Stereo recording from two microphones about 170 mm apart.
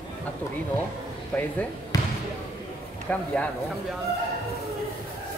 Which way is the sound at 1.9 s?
20° left (ahead or behind).